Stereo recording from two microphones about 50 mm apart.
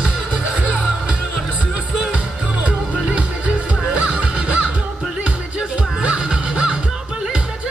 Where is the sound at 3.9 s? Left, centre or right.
Right.